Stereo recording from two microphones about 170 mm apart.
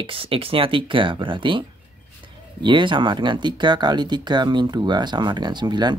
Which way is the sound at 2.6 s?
30° right (ahead or behind).